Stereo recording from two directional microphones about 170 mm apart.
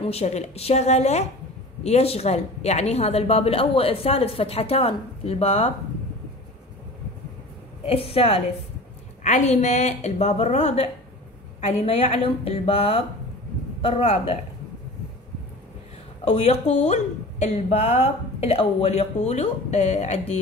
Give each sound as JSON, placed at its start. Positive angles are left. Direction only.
{"t": 0.0, "sound": "speech", "side_deg": 40}
{"t": 7.8, "sound": "speech", "side_deg": 35}
{"t": 16.3, "sound": "speech", "side_deg": 40}